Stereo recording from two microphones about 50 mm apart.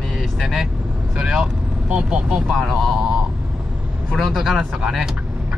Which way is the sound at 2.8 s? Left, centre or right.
Centre.